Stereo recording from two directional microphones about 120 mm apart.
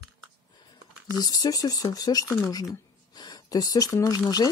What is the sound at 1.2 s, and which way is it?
Speech, 30° left (ahead or behind).